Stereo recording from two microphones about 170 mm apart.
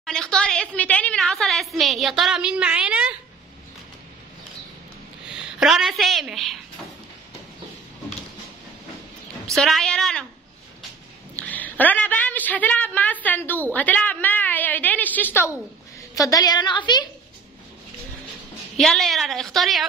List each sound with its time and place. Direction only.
0.0 s a woman's voice: 5° left (ahead or behind)
5.3 s a woman's voice: 5° right (ahead or behind)
9.6 s a woman's voice: centre (ahead or behind)
11.3 s a woman's voice: 10° left (ahead or behind); by 17.0 s 25° left (ahead or behind)
18.8 s a woman's voice: centre (ahead or behind)